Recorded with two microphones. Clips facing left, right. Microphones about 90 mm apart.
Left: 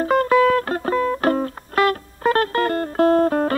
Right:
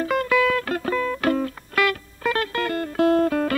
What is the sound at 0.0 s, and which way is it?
Music, 35° left (ahead or behind).